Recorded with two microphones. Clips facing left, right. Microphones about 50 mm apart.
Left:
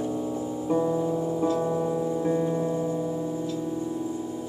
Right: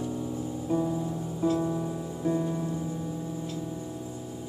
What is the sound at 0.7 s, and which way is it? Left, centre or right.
Music, left.